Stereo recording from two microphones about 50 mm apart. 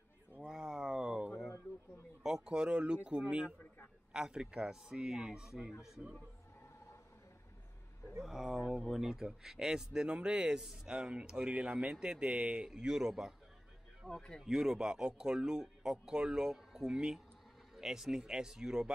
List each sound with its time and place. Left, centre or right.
0.4 s a sound: centre
2.2 s speech: centre
8.2 s speech: centre
14.0 s speech: centre
14.4 s speech: centre